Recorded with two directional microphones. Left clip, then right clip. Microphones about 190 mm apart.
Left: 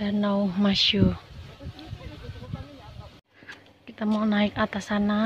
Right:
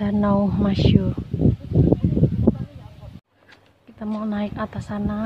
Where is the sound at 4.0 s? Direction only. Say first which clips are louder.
Left 2 dB; 5° left (ahead or behind).